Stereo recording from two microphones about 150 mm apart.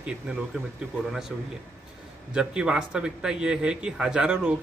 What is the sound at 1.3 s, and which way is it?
A man's voice, centre (ahead or behind).